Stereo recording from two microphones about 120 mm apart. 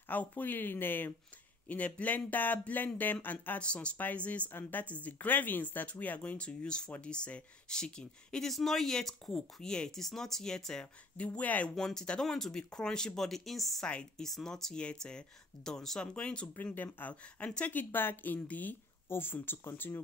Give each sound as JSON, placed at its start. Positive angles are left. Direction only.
{"t": 0.1, "sound": "speech", "side_deg": 15}